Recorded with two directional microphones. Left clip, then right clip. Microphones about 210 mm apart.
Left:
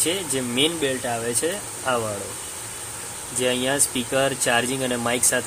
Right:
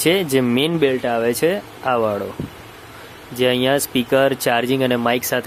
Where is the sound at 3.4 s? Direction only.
40° right (ahead or behind).